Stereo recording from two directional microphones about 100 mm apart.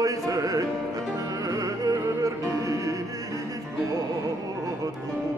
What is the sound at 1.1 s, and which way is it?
Music, 35° right (ahead or behind).